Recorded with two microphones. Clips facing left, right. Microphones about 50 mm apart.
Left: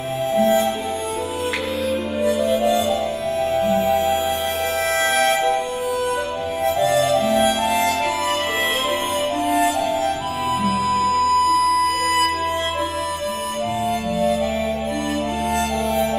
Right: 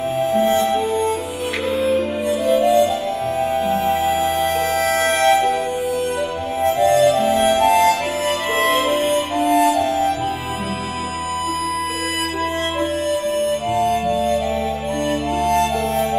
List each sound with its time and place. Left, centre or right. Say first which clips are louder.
3.6 s music: even; right
8.6 s music: right 4 dB; centre